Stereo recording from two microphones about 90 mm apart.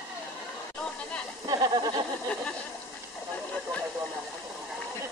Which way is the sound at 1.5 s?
45° right (ahead or behind).